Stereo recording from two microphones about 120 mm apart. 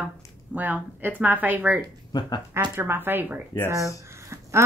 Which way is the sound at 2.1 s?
35° left (ahead or behind).